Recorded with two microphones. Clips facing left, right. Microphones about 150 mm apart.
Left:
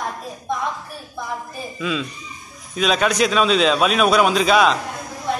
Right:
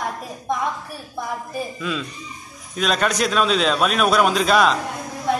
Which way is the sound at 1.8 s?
Centre (ahead or behind).